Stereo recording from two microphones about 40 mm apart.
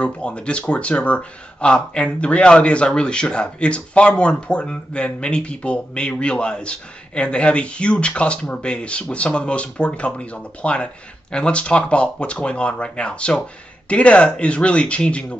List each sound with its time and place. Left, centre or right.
0.0 s speech: left